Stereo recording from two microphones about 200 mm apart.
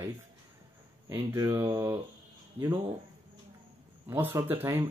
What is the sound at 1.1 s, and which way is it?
Speech, 15° right (ahead or behind).